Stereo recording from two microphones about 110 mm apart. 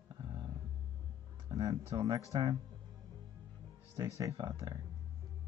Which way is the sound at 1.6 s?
30° right (ahead or behind).